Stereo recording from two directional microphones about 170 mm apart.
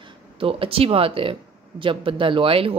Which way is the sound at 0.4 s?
35° right (ahead or behind).